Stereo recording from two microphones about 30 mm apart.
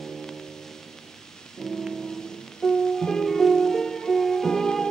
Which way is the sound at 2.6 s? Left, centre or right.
Centre.